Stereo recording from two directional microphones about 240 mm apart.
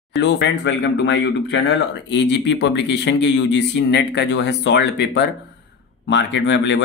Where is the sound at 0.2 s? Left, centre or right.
Left.